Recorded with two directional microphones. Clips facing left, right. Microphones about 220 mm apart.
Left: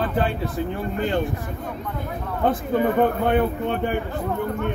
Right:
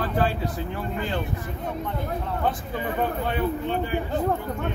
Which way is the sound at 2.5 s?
55° left (ahead or behind).